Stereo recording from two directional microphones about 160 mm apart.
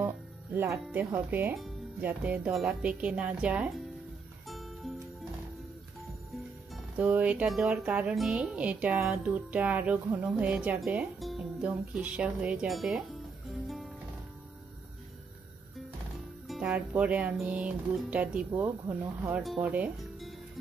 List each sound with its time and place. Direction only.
0.0 s music: 15° right (ahead or behind); by 4.9 s centre (ahead or behind)
6.7 s music: 10° right (ahead or behind)
10.4 s speech: 10° right (ahead or behind)
16.4 s music: 5° right (ahead or behind)
19.4 s speech: 5° right (ahead or behind)